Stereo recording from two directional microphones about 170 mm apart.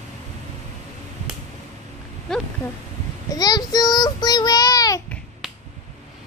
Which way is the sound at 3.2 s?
20° left (ahead or behind).